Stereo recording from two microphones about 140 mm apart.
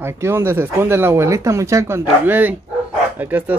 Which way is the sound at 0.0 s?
15° right (ahead or behind).